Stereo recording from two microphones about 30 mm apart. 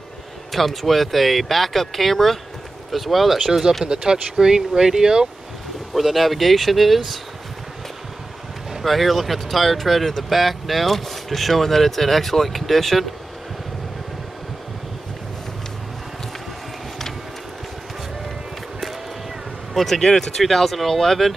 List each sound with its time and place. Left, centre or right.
0.5 s speech: centre
3.8 s speech: right
5.9 s speech: centre
8.8 s speech: centre
19.7 s speech: centre
20.0 s speech: centre